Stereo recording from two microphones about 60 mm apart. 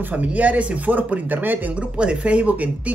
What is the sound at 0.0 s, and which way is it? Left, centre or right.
Speech, right.